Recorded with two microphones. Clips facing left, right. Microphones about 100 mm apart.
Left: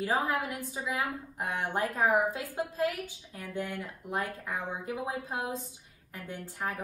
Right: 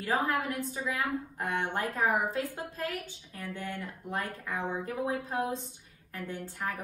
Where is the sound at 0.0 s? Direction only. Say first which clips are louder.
Even; 15° left (ahead or behind).